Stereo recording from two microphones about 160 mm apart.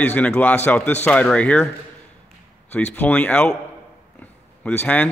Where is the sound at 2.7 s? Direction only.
10° left (ahead or behind).